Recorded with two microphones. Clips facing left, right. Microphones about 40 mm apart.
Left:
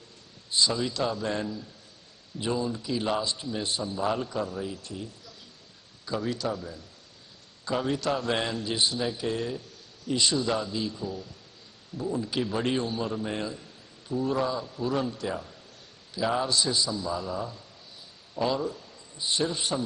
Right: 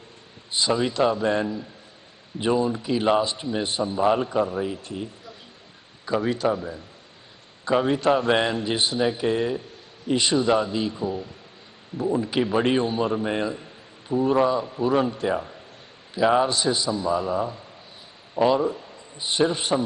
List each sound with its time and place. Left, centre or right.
0.5 s a man's voice: right